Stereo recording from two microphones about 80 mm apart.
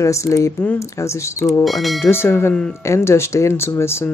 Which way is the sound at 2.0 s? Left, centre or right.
Left.